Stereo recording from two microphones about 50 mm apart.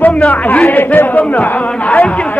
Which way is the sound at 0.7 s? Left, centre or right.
Left.